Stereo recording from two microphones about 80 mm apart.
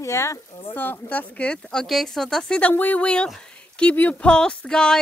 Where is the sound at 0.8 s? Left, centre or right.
Left.